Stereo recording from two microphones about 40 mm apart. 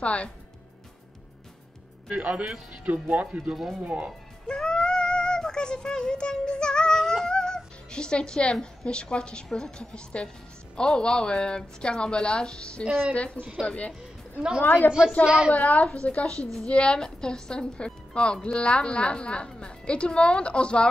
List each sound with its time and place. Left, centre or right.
0.0 s a woman's voice: left
2.0 s speech: right
4.5 s a sound: left
7.2 s music: centre
8.8 s a woman's voice: left
14.6 s a woman's voice: left
14.9 s a woman's voice: centre
15.5 s a woman's voice: left